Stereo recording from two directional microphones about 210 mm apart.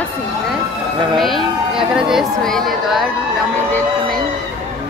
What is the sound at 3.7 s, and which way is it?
Music, 10° left (ahead or behind).